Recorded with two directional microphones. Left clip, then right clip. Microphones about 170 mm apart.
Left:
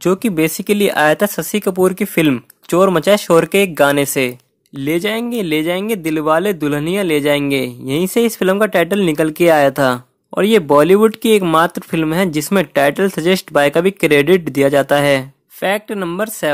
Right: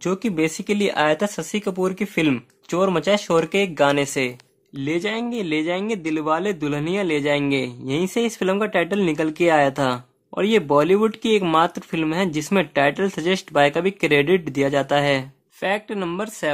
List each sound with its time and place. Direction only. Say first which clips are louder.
0.0 s speech: left 7 dB; 35° left (ahead or behind)